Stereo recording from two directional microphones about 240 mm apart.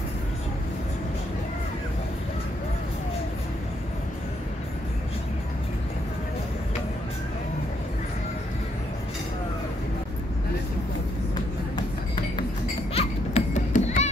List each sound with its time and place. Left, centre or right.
12.9 s children playing: left